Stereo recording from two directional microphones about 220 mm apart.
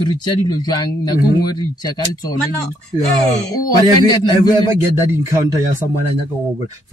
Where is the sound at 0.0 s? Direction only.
20° left (ahead or behind).